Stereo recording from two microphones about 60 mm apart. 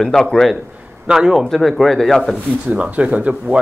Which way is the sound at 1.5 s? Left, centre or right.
Centre.